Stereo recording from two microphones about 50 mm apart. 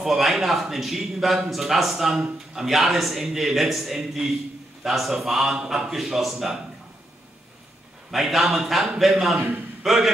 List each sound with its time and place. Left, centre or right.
0.0 s a man's voice: centre
8.1 s a man's voice: centre